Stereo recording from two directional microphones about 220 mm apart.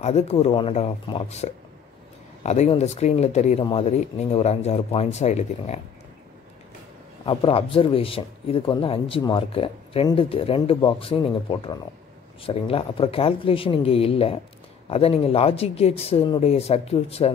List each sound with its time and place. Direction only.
0.0 s speech: 30° left (ahead or behind)
7.2 s speech: 25° left (ahead or behind)